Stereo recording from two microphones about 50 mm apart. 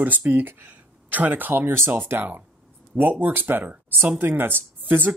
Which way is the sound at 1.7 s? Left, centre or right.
Right.